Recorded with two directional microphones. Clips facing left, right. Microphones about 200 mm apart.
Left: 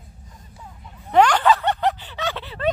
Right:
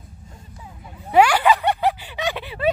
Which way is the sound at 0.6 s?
10° right (ahead or behind).